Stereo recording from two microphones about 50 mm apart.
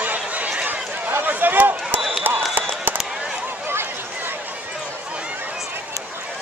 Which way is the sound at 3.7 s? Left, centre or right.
Right.